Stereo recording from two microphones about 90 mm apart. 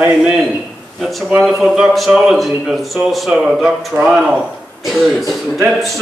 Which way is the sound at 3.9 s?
15° right (ahead or behind).